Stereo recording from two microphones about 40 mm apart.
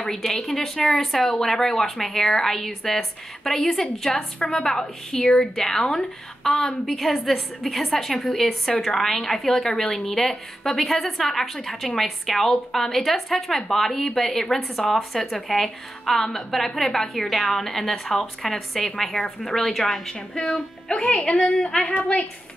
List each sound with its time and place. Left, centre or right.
0.0 s a woman's voice: centre
21.0 s a woman's voice: left